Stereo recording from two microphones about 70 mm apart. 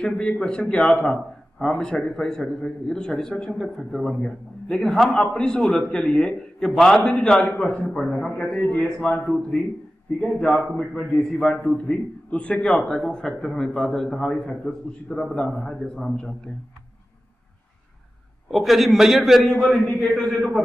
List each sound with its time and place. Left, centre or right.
0.0 s a man's voice: centre
7.9 s a man's voice: centre
18.5 s a man's voice: centre
19.5 s a man's voice: centre